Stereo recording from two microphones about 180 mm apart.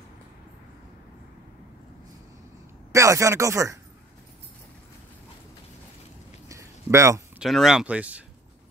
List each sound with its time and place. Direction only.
2.9 s speech: 15° right (ahead or behind)
6.5 s a sound: 15° right (ahead or behind)
7.3 s speech: centre (ahead or behind)